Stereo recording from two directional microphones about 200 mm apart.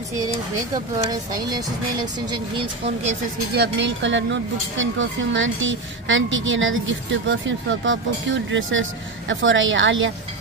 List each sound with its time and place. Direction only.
1.5 s speech: 20° right (ahead or behind)
3.5 s speech: 60° right (ahead or behind)